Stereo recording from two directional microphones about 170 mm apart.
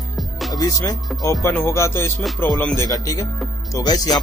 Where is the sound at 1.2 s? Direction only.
20° left (ahead or behind).